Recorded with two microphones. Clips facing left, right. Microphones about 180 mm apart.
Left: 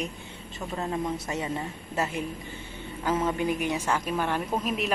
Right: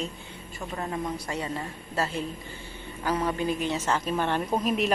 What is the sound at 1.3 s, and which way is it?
A woman's voice, 20° left (ahead or behind).